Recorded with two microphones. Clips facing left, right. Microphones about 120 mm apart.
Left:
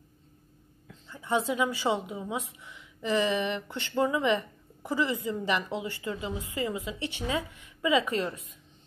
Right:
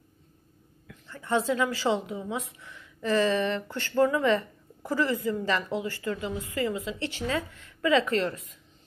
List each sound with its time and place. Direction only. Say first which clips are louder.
1.0 s a woman's voice: right 2 dB; 15° left (ahead or behind)